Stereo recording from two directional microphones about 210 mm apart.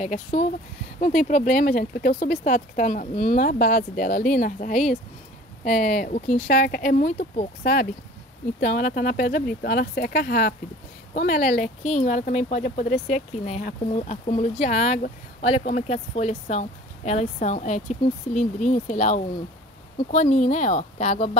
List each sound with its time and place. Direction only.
0.0 s speech: 35° left (ahead or behind)